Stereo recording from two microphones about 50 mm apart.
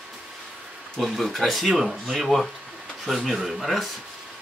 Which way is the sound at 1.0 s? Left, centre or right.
Centre.